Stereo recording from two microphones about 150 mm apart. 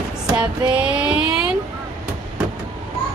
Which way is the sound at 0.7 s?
10° right (ahead or behind).